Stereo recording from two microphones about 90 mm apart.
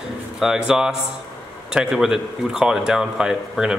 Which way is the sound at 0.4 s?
5° right (ahead or behind).